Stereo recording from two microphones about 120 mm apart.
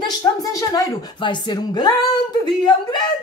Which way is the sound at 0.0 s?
30° left (ahead or behind).